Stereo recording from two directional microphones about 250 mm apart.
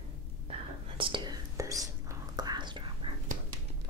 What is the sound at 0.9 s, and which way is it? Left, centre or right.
Whispering, centre.